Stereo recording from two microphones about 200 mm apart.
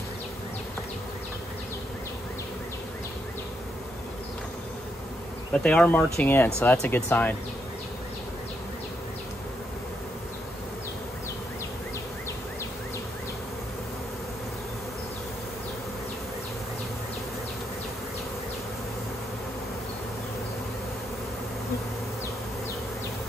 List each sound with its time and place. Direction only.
5.5 s bee: 5° left (ahead or behind)
6.1 s speech: 10° left (ahead or behind)